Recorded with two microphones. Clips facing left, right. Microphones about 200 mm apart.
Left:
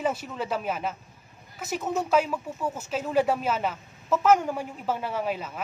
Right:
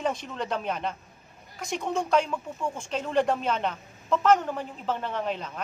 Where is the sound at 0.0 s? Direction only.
5° left (ahead or behind).